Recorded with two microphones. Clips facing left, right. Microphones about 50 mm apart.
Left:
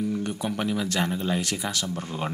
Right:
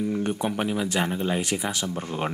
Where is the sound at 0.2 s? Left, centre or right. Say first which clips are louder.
Right 3 dB; right.